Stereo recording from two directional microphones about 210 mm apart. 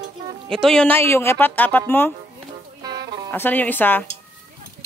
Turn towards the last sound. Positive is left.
turn(degrees=10)  # may be behind; listen again after turning